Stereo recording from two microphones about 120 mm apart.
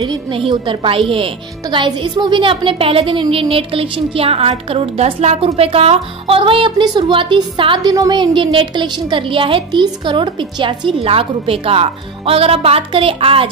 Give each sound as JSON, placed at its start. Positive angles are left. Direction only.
{"t": 0.0, "sound": "speech", "side_deg": -40}
{"t": 7.9, "sound": "speech", "side_deg": -30}
{"t": 8.2, "sound": "speech", "side_deg": -45}